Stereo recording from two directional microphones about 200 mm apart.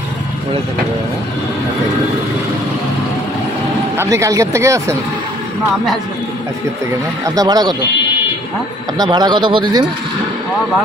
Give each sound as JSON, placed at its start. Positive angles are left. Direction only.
{"t": 3.9, "sound": "speech", "side_deg": -15}
{"t": 7.2, "sound": "speech", "side_deg": -20}
{"t": 8.9, "sound": "speech", "side_deg": -20}